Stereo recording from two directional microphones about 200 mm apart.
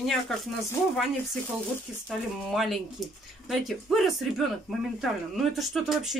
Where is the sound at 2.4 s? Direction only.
Centre (ahead or behind).